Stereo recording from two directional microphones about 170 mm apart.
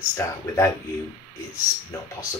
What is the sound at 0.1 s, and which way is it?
Speech, 20° left (ahead or behind).